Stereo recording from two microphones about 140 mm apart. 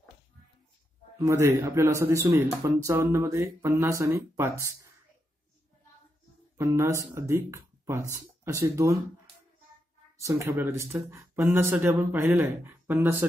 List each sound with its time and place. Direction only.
1.1 s a man's voice: 20° right (ahead or behind)
6.6 s speech: 20° right (ahead or behind)
10.1 s speech: 20° right (ahead or behind)